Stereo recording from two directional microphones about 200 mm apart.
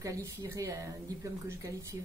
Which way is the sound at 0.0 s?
15° right (ahead or behind).